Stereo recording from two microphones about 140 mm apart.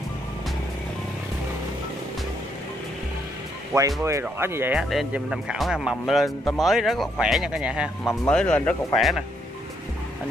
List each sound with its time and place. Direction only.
3.7 s speech: 20° right (ahead or behind)
4.7 s speech: 5° right (ahead or behind)
8.3 s speech: 10° left (ahead or behind)